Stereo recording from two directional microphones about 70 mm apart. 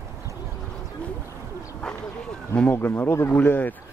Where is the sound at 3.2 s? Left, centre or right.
Left.